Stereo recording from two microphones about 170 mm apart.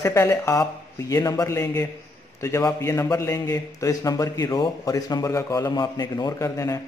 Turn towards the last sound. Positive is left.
turn(degrees=20)  # may be behind; listen again after turning